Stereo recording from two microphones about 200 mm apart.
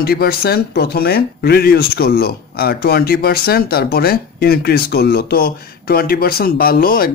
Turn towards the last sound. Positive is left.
turn(degrees=45)  # may be behind; listen again after turning